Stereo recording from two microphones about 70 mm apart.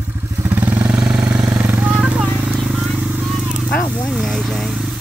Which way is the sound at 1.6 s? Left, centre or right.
Right.